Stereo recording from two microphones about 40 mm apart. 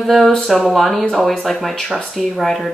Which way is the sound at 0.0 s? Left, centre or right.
Centre.